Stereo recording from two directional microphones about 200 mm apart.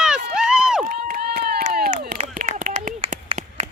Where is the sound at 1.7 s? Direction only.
50° right (ahead or behind).